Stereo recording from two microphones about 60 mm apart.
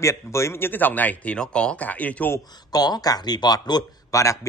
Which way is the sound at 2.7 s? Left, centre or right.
Left.